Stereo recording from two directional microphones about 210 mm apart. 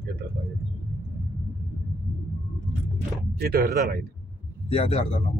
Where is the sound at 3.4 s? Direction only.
45° right (ahead or behind).